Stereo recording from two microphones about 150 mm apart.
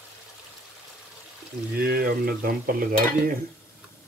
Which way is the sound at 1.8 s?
90° right.